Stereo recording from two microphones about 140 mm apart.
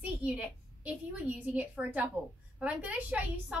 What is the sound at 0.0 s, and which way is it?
A woman's voice, 10° right (ahead or behind).